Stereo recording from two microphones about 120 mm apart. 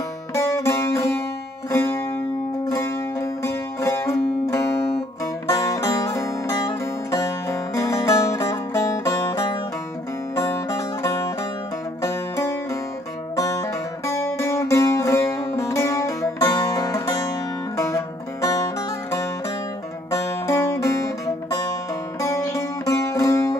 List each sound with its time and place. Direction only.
0.3 s music: 25° left (ahead or behind)
20.1 s music: 25° left (ahead or behind)